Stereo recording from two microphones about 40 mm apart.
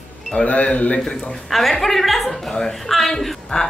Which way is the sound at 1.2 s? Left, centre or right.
Centre.